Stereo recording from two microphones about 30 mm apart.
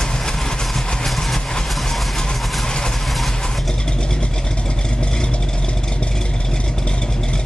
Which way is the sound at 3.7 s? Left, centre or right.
Left.